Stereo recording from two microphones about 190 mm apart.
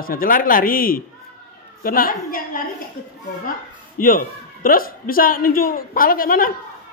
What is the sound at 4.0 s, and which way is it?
A woman's voice, 45° left (ahead or behind).